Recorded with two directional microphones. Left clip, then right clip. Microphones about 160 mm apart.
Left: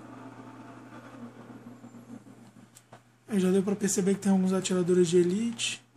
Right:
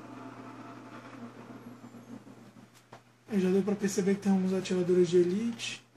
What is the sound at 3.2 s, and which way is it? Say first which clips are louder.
Speech: left 2 dB; 50° left (ahead or behind).